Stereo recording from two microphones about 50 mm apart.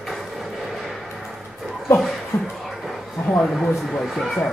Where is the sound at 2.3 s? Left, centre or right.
Left.